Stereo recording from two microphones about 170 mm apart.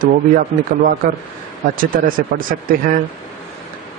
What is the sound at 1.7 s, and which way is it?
Speech, 55° right (ahead or behind).